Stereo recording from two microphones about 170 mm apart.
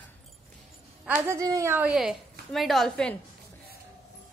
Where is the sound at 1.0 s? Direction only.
15° right (ahead or behind); by 3.2 s 5° left (ahead or behind).